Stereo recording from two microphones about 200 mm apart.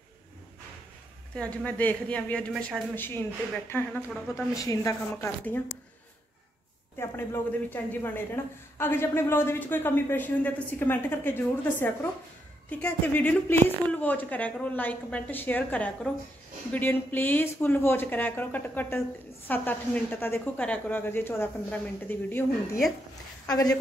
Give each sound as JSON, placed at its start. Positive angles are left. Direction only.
{"t": 1.3, "sound": "speech", "side_deg": 5}
{"t": 7.0, "sound": "speech", "side_deg": 10}
{"t": 23.5, "sound": "speech", "side_deg": 20}